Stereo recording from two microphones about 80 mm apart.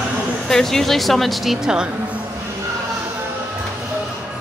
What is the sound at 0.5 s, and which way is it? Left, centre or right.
Speech, centre.